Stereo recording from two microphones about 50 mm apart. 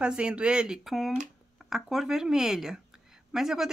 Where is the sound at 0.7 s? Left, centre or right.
Centre.